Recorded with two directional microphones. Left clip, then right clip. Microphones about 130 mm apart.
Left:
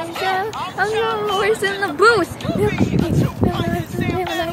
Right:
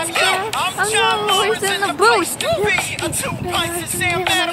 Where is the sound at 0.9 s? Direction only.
40° right (ahead or behind).